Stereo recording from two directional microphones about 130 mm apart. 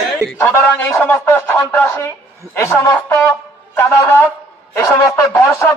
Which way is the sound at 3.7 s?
20° left (ahead or behind).